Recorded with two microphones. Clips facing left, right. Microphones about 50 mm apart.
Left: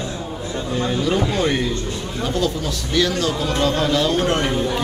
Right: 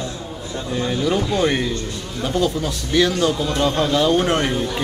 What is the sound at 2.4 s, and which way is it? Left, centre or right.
A man's voice, centre.